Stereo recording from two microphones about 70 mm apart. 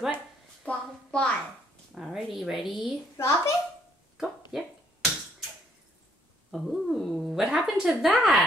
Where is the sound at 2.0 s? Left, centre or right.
Centre.